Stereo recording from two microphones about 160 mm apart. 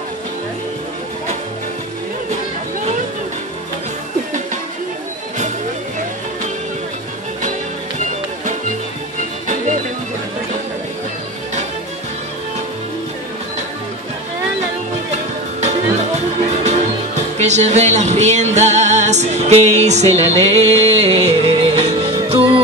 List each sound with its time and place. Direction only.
15.6 s speech: 45° right (ahead or behind)